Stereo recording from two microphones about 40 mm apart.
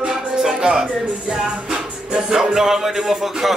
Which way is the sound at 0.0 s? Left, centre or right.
Centre.